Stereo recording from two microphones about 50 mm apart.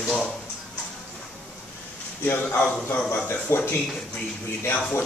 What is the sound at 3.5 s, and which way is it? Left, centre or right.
Speech, left.